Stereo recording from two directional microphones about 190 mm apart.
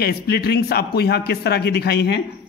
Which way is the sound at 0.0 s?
55° left (ahead or behind).